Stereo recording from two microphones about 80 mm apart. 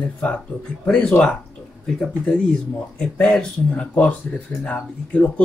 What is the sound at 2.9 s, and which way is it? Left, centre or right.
Speech, centre.